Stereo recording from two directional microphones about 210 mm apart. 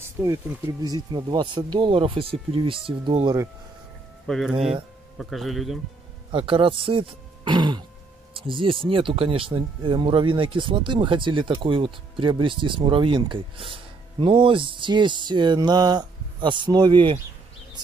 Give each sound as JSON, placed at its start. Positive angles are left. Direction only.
{"t": 0.2, "sound": "a man's voice", "side_deg": -5}
{"t": 0.8, "sound": "speech", "side_deg": -20}
{"t": 4.3, "sound": "a man's voice", "side_deg": 0}
{"t": 6.3, "sound": "speech", "side_deg": -25}